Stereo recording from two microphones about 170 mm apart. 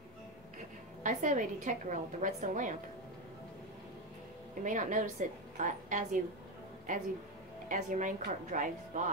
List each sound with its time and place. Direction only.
1.0 s a woman's voice: 50° right (ahead or behind)
4.6 s a woman's voice: 50° right (ahead or behind)
7.6 s a woman's voice: 50° right (ahead or behind)